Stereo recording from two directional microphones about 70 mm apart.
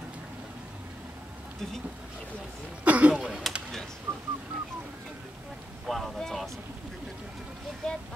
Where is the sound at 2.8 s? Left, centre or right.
Right.